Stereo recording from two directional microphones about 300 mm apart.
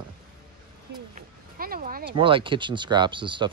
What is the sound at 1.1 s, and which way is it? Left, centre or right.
Speech, right.